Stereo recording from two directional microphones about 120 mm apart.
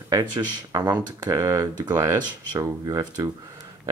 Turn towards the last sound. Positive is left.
turn(degrees=-30)  # may be behind; listen again after turning